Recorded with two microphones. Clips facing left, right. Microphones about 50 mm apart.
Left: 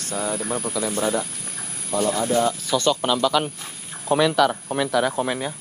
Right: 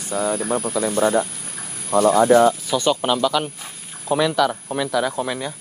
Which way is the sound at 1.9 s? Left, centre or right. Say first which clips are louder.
Right 7 dB; right.